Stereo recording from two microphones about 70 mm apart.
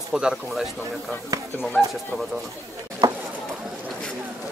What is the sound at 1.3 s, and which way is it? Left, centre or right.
Speech, right.